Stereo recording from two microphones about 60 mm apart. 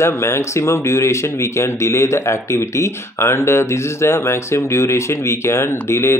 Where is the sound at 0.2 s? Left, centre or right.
Left.